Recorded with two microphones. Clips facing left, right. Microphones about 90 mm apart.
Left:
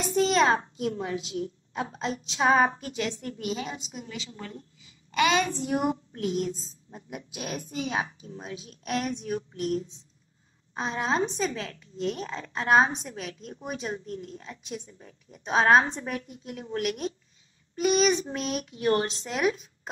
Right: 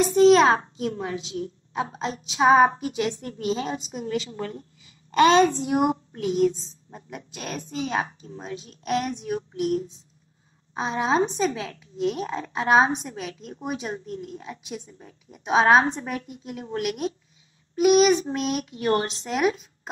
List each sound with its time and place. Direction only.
0.1 s a child's voice: centre (ahead or behind)
2.4 s speech: 15° right (ahead or behind)
3.2 s a woman's voice: 30° right (ahead or behind); by 5.2 s 55° right (ahead or behind)
5.2 s a child's voice: 35° right (ahead or behind)
5.5 s a child's voice: 20° right (ahead or behind)
6.1 s a woman's voice: centre (ahead or behind)
10.7 s a woman's voice: 5° right (ahead or behind)